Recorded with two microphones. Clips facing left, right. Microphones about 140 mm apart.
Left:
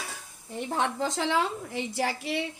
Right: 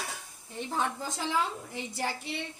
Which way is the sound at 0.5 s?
65° left (ahead or behind).